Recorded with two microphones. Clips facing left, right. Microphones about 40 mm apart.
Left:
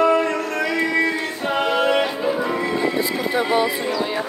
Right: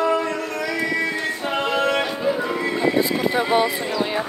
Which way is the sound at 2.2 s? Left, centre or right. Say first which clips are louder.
Left 1 dB; centre.